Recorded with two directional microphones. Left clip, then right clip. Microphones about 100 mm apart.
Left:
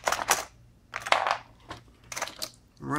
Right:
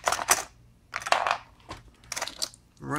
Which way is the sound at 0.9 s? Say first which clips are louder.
Even; 15° left (ahead or behind).